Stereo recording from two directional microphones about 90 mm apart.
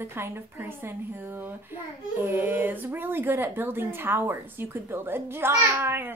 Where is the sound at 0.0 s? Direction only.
25° right (ahead or behind).